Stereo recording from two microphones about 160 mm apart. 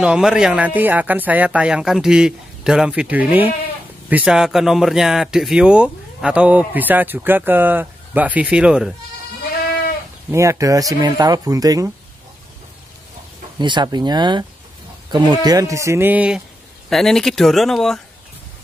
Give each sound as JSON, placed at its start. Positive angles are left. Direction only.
{"t": 0.0, "sound": "speech", "side_deg": -5}
{"t": 10.3, "sound": "speech", "side_deg": -20}
{"t": 13.6, "sound": "speech", "side_deg": -30}